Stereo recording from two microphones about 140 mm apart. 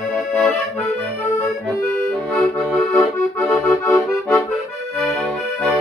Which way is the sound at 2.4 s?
10° left (ahead or behind).